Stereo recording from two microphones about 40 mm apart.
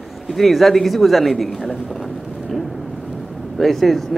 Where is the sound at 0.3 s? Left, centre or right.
Centre.